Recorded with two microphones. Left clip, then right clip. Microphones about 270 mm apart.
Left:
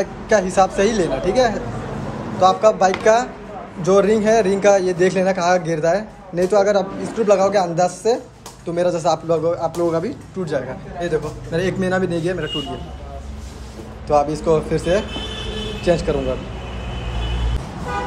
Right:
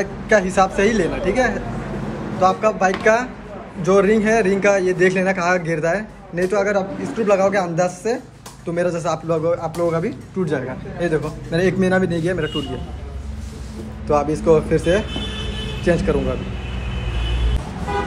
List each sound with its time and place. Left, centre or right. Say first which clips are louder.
0.0 s a man's voice: even; centre
14.0 s a man's voice: even; centre